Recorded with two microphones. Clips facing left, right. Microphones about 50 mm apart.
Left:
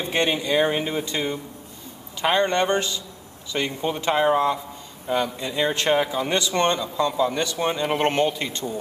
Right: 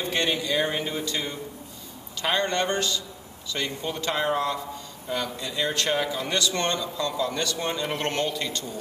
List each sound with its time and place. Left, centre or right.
0.0 s speech: left